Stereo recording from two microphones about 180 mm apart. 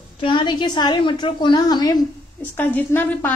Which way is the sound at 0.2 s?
25° left (ahead or behind).